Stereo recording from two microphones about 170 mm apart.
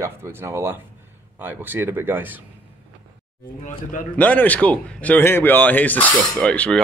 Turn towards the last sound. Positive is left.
turn(degrees=5)  # may be behind; listen again after turning